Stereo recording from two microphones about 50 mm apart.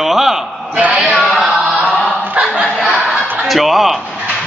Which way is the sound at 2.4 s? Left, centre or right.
Right.